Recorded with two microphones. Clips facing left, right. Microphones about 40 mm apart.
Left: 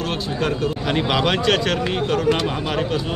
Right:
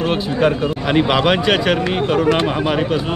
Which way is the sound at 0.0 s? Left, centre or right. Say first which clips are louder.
Right 7 dB; centre.